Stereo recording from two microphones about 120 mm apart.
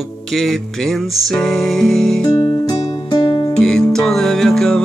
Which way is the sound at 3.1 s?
45° left (ahead or behind).